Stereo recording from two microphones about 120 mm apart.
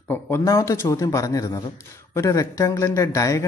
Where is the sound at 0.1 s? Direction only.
20° left (ahead or behind).